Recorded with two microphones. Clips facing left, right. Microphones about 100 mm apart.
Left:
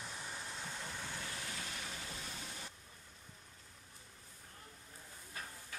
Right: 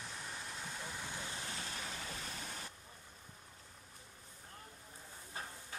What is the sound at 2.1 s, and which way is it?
Waterfall, 45° right (ahead or behind).